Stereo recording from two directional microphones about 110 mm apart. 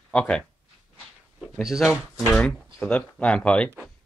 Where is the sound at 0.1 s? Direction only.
10° left (ahead or behind).